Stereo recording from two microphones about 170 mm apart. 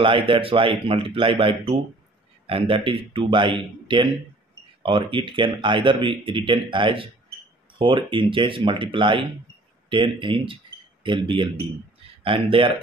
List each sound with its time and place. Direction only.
0.0 s speech: 30° right (ahead or behind)